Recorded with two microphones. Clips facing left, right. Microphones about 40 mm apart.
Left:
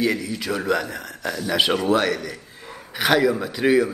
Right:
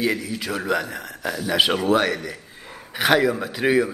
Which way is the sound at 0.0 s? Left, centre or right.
Centre.